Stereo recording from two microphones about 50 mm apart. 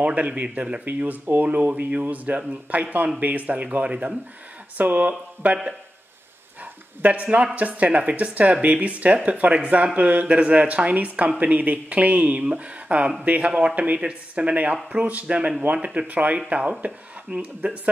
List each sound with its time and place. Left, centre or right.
0.0 s speech: right
1.8 s speech: right
6.6 s dog: right
7.5 s speech: right